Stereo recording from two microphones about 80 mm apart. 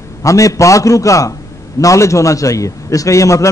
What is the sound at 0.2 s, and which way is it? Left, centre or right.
A man's voice, left.